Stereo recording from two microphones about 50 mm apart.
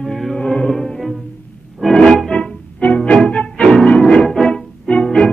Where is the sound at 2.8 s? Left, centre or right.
Left.